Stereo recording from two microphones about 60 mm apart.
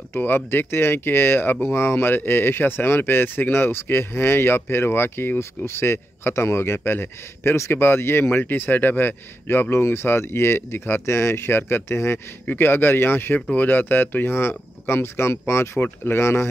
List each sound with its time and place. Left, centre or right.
0.1 s speech: left
12.4 s speech: left